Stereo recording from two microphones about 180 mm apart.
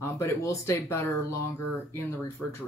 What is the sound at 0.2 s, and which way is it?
Speech, 15° left (ahead or behind).